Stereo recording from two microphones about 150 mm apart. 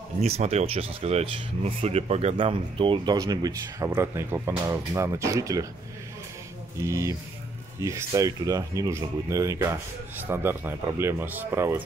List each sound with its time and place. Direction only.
0.2 s speech: 45° right (ahead or behind)
3.2 s speech: 25° right (ahead or behind)
6.8 s speech: 20° right (ahead or behind)